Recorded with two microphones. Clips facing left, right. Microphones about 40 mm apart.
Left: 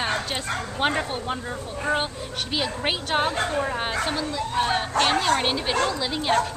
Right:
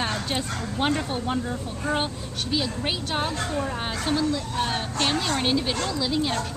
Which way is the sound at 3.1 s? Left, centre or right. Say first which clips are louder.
Left 7 dB; left.